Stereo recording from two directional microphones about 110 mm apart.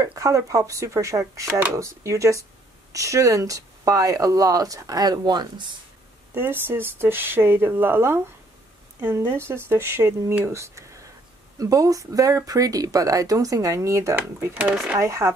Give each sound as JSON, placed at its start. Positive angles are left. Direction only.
{"t": 0.0, "sound": "speech", "side_deg": -30}
{"t": 6.3, "sound": "speech", "side_deg": -20}
{"t": 14.1, "sound": "speech", "side_deg": -15}
{"t": 15.0, "sound": "speech", "side_deg": -30}